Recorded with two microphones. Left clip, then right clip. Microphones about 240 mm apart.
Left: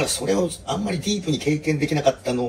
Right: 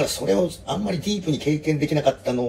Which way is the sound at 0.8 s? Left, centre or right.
Left.